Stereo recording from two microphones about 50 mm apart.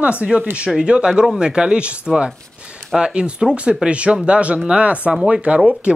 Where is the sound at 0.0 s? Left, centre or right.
Right.